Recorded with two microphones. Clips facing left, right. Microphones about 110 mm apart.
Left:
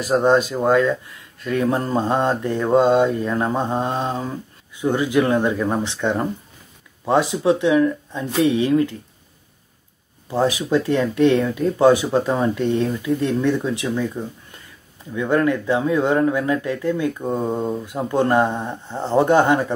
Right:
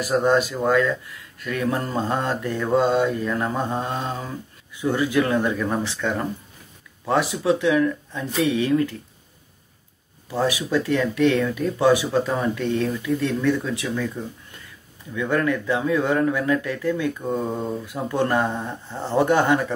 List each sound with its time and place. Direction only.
0.2 s mantra: 25° left (ahead or behind)
10.3 s mantra: 25° left (ahead or behind)